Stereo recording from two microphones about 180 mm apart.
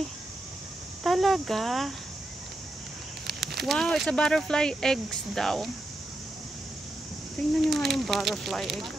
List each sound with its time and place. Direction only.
1.0 s speech: centre (ahead or behind)
3.3 s a sound: 65° right (ahead or behind)
3.6 s speech: centre (ahead or behind)
7.6 s speech: centre (ahead or behind)